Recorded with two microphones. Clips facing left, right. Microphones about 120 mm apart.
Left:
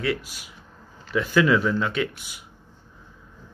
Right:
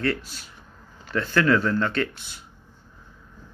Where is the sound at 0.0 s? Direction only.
10° left (ahead or behind).